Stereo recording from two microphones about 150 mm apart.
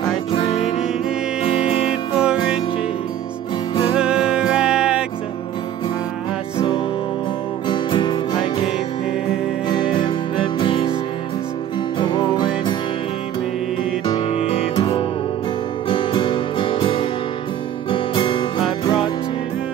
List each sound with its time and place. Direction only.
1.4 s music: 40° left (ahead or behind)
2.1 s music: 5° right (ahead or behind)
4.0 s music: 5° right (ahead or behind)
7.6 s music: 30° left (ahead or behind)
9.7 s music: 30° left (ahead or behind)
12.0 s music: 30° left (ahead or behind)
14.0 s music: 35° left (ahead or behind)